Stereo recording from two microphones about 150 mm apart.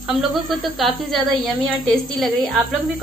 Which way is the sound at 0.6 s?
Centre (ahead or behind).